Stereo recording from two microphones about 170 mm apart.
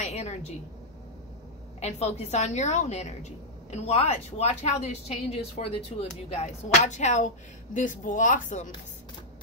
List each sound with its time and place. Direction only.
0.0 s a woman's voice: 40° left (ahead or behind)
1.8 s a woman's voice: 40° left (ahead or behind)